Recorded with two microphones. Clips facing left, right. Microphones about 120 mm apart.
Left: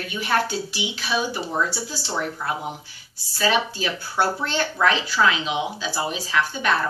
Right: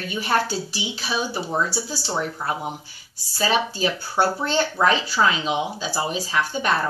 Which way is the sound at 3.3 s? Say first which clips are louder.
Even; 40° right (ahead or behind).